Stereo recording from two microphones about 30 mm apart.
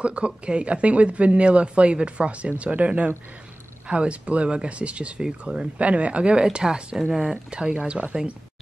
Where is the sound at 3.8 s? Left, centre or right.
Right.